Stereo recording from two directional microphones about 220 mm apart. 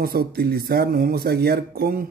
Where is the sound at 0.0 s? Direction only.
45° right (ahead or behind).